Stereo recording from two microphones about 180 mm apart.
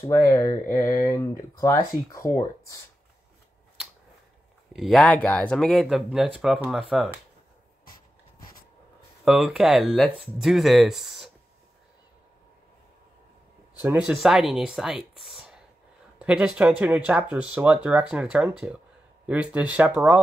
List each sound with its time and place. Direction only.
0.0 s speech: 15° left (ahead or behind)
4.7 s speech: centre (ahead or behind)
9.2 s speech: 5° right (ahead or behind)
13.8 s speech: 5° right (ahead or behind)